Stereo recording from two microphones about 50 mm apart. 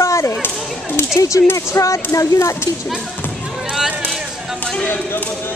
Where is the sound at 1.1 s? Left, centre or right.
Left.